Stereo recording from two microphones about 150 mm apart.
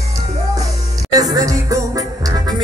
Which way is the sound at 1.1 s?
25° right (ahead or behind).